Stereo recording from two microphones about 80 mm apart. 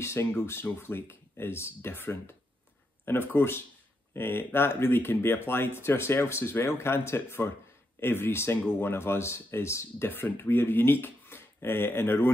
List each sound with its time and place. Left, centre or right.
0.0 s speech: left